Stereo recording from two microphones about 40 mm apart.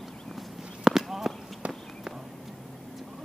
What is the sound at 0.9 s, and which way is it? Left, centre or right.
Run, centre.